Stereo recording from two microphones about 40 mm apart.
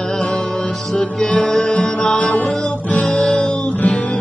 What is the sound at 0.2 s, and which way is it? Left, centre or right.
Music, centre.